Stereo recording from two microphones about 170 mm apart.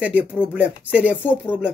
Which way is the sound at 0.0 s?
5° right (ahead or behind).